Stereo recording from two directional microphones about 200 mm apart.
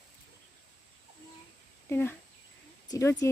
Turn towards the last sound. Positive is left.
turn(degrees=15)  # may be behind; listen again after turning